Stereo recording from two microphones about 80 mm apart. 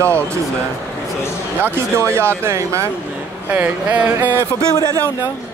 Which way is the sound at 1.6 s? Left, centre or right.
Right.